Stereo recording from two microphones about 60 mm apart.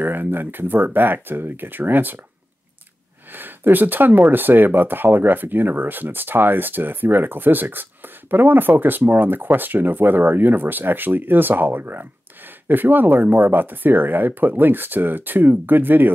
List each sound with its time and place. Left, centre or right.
0.0 s speech: right
3.3 s speech: right